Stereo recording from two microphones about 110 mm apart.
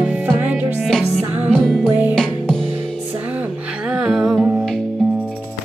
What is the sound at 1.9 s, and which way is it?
Music, 15° right (ahead or behind).